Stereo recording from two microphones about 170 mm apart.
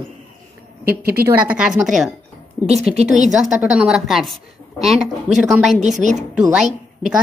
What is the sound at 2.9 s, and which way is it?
Speech, 45° right (ahead or behind).